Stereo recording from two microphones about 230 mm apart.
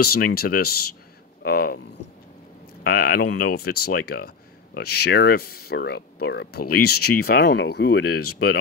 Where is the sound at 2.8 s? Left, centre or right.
Left.